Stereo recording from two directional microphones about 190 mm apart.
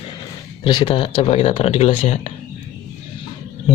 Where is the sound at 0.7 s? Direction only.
25° left (ahead or behind).